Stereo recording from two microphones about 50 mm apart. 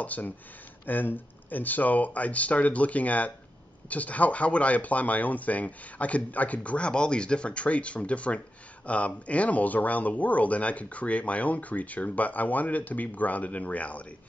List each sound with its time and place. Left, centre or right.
0.0 s speech: left